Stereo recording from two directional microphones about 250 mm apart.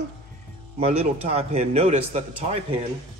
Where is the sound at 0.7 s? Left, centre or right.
Right.